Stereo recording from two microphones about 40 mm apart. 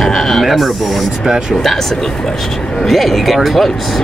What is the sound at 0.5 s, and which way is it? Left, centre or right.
Speech, centre.